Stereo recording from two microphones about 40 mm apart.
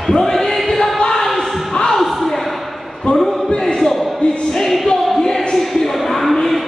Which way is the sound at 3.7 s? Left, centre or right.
Centre.